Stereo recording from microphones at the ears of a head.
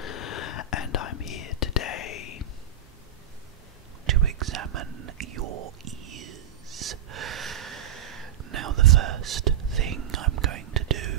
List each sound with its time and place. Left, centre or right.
0.0 s whispering: left
4.0 s whispering: right